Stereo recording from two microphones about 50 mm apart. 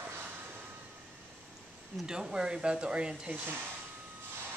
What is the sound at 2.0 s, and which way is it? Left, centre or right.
Speech, centre.